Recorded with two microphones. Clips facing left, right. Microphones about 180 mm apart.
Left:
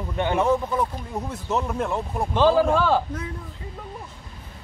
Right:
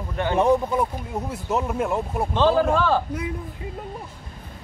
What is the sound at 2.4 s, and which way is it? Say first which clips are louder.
Speech: left 1 dB; 10° left (ahead or behind).